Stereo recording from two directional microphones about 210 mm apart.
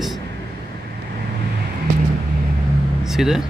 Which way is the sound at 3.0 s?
Centre (ahead or behind).